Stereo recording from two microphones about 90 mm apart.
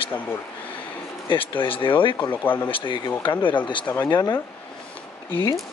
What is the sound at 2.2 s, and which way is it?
Speech, 20° left (ahead or behind).